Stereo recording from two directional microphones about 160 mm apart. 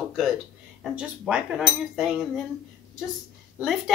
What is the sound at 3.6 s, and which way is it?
Speech, centre (ahead or behind).